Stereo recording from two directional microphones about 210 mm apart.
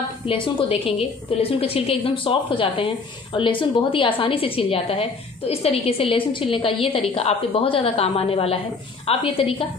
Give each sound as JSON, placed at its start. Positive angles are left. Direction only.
{"t": 0.3, "sound": "a woman's voice", "side_deg": 25}